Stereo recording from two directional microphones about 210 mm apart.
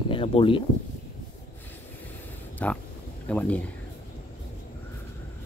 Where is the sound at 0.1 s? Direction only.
25° left (ahead or behind).